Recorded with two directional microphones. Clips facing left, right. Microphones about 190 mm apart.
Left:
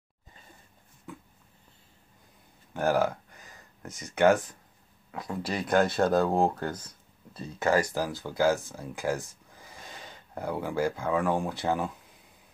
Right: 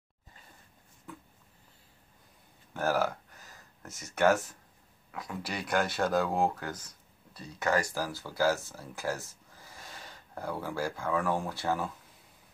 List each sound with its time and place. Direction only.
2.7 s speech: 15° left (ahead or behind)
5.1 s speech: 25° left (ahead or behind)